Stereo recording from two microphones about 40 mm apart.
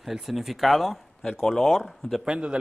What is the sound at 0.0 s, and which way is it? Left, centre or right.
Speech, centre.